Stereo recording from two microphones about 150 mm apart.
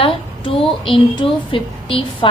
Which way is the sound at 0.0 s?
35° left (ahead or behind).